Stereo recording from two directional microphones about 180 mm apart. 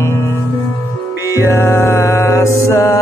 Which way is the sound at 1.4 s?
15° left (ahead or behind).